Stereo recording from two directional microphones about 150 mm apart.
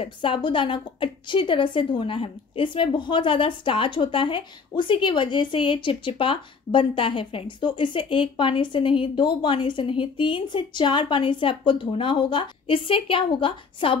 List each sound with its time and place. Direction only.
0.0 s a woman's voice: 35° left (ahead or behind)